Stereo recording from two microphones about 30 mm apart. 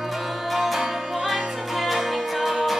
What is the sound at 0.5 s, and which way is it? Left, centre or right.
Music, centre.